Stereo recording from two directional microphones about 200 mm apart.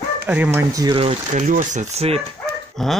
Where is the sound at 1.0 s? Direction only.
35° right (ahead or behind).